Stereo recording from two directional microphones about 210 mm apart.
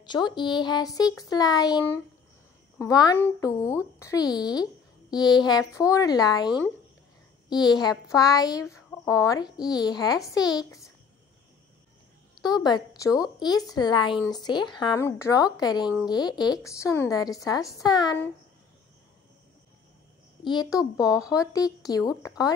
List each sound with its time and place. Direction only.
0.0 s a woman's voice: 20° left (ahead or behind)
12.4 s a woman's voice: 20° left (ahead or behind)
20.4 s a woman's voice: 20° left (ahead or behind)